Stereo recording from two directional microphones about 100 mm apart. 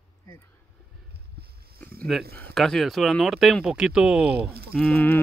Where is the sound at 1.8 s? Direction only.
15° left (ahead or behind).